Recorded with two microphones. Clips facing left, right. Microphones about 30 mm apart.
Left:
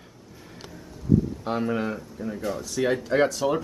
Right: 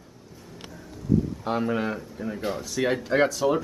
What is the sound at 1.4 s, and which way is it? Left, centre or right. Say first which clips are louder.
Speech: even; centre.